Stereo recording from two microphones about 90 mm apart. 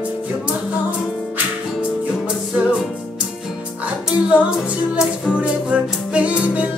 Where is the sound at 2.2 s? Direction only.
10° right (ahead or behind).